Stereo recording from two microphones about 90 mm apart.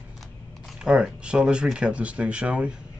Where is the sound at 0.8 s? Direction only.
10° right (ahead or behind).